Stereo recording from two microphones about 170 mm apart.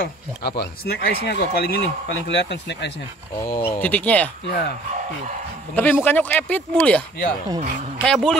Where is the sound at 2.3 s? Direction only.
90° left.